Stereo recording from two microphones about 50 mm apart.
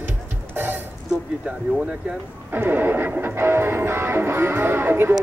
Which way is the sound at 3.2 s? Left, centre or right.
Right.